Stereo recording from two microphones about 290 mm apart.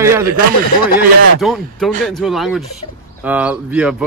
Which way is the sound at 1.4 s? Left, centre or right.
Centre.